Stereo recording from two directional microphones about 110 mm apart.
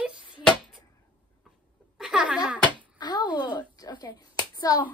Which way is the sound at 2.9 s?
40° left (ahead or behind).